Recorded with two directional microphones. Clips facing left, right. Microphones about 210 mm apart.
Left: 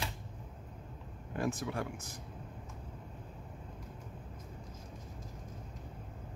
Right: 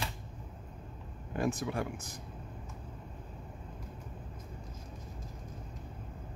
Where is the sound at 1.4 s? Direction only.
15° right (ahead or behind).